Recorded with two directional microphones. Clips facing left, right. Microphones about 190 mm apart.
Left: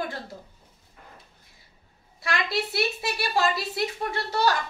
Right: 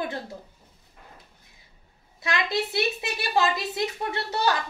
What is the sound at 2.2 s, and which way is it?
A woman's voice, 20° right (ahead or behind).